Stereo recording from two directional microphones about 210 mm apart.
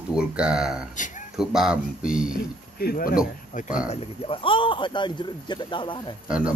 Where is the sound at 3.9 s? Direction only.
25° left (ahead or behind).